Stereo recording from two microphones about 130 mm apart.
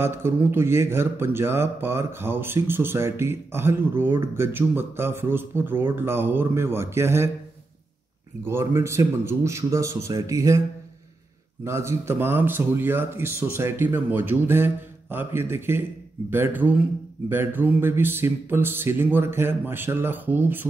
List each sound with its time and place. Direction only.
0.0 s speech: 20° right (ahead or behind)
8.5 s speech: 20° right (ahead or behind)
11.6 s speech: 20° right (ahead or behind)